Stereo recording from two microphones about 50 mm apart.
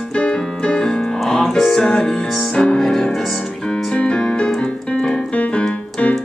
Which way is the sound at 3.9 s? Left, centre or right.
Centre.